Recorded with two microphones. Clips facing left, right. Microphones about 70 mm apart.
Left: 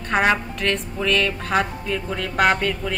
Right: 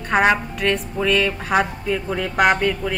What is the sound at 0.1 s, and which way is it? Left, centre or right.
A woman's voice, centre.